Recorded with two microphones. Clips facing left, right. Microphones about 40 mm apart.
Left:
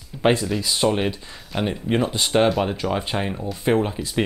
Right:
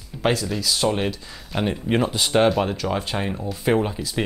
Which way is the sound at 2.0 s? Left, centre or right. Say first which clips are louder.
Even; centre.